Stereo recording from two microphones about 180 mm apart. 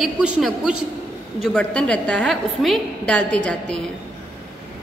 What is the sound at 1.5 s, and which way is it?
A woman's voice, 5° left (ahead or behind).